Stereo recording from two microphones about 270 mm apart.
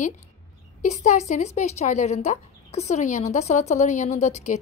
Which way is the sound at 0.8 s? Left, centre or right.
Left.